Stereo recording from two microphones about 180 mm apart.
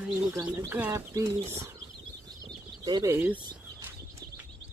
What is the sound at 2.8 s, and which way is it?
Speech, 20° right (ahead or behind).